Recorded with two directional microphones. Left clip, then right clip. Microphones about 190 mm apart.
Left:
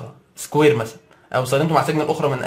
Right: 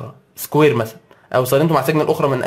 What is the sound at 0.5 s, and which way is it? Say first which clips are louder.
A man's voice: right 2 dB; 30° right (ahead or behind).